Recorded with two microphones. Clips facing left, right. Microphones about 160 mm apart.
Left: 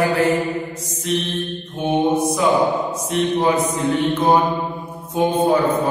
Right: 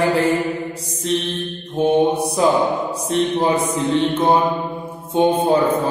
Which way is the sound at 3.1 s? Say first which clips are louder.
Even; 30° right (ahead or behind).